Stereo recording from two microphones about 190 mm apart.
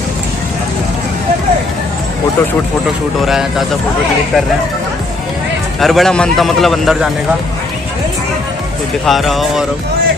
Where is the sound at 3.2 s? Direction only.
Centre (ahead or behind).